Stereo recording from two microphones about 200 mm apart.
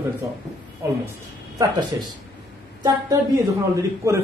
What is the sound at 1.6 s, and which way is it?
Speech, 15° right (ahead or behind).